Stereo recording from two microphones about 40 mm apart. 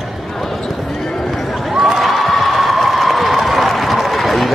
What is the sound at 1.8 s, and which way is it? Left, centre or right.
Crowd, centre.